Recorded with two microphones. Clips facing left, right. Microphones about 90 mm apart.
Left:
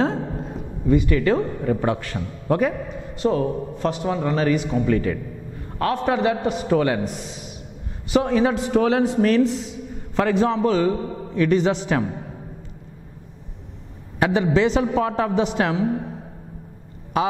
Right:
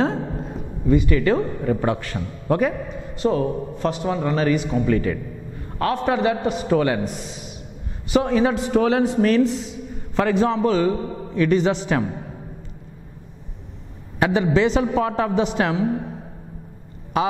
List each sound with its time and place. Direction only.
0.0 s a sound: 15° right (ahead or behind)
0.8 s a man's voice: 10° right (ahead or behind)
8.1 s a man's voice: 15° right (ahead or behind)
14.2 s a man's voice: 10° right (ahead or behind)